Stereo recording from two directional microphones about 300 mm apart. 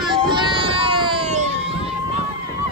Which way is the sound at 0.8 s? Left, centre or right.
Centre.